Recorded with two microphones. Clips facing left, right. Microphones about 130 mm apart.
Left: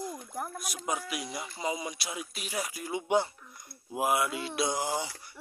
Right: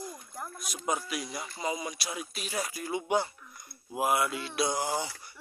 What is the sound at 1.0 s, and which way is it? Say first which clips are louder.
Speech: even; 20° left (ahead or behind).